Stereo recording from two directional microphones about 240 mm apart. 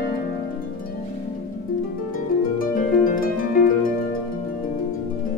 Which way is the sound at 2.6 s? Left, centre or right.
Left.